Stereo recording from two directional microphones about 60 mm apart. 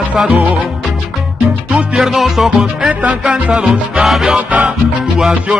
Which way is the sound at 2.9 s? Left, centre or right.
Right.